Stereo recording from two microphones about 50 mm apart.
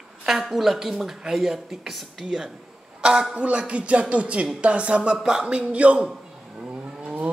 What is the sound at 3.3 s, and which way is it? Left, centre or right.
Speech, right.